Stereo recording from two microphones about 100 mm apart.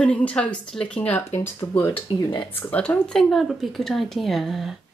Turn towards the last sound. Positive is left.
turn(degrees=0)  # may be behind; listen again after turning